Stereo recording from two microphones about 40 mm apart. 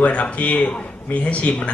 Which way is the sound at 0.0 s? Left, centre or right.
Left.